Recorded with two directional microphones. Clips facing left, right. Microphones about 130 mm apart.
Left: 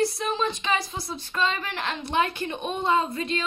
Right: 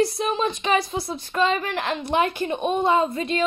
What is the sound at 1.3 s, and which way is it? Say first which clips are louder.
Speech: right 5 dB; 25° right (ahead or behind).